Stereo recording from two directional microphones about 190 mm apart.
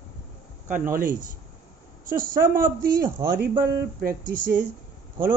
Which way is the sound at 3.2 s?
15° right (ahead or behind).